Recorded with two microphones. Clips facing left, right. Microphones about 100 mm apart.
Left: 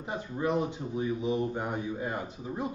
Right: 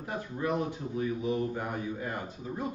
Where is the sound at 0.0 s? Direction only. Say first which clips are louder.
Left 2 dB; 20° left (ahead or behind).